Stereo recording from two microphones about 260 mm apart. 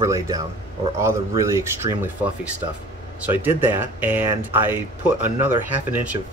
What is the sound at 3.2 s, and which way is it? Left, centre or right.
Speech, centre.